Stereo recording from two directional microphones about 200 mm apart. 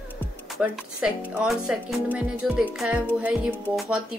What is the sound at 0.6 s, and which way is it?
Speech, 5° right (ahead or behind).